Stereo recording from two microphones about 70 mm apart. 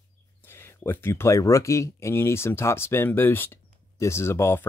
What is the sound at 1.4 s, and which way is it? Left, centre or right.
Speech, left.